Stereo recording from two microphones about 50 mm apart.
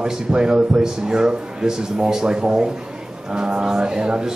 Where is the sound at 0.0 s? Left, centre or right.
Centre.